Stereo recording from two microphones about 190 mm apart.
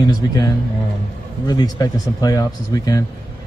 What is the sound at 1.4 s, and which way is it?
Speech, 20° left (ahead or behind).